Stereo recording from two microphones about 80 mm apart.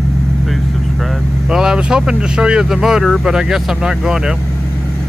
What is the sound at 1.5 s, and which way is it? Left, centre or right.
Speech, centre.